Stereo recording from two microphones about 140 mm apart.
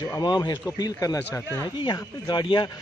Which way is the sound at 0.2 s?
30° left (ahead or behind).